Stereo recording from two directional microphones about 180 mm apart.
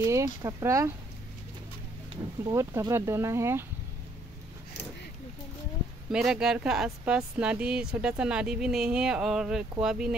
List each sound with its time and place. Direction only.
0.0 s speech: 20° right (ahead or behind)
2.4 s speech: 15° right (ahead or behind)
6.1 s speech: 5° right (ahead or behind)